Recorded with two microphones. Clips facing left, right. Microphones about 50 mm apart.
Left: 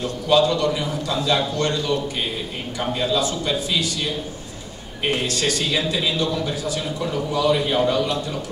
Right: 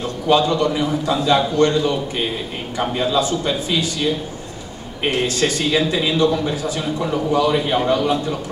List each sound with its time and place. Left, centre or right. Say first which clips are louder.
0.3 s a man's voice: right 2 dB; right
5.4 s a man's voice: right 4 dB; right